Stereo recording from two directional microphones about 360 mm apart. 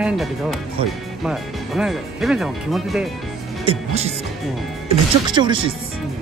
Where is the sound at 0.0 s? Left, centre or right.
Centre.